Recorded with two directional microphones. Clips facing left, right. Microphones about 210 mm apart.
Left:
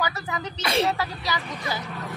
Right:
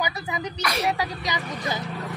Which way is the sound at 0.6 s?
25° left (ahead or behind).